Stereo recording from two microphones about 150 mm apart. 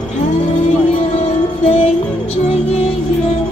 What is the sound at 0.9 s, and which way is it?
Music, 45° left (ahead or behind).